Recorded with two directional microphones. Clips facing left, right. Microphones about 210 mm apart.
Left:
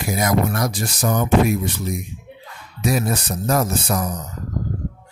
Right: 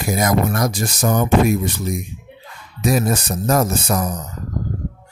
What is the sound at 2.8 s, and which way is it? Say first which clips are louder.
Speech: right 3 dB; 45° right (ahead or behind).